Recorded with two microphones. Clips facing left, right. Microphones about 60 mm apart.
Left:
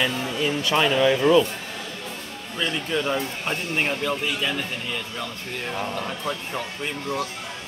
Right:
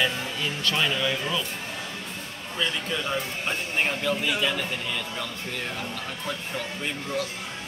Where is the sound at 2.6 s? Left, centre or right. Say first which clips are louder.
Left 3 dB; centre.